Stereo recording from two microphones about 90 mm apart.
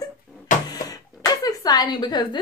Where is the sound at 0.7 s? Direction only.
40° left (ahead or behind).